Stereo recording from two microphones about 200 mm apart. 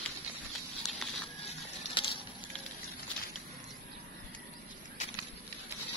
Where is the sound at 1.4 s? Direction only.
25° left (ahead or behind).